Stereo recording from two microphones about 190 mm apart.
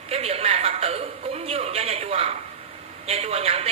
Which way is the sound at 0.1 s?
30° right (ahead or behind).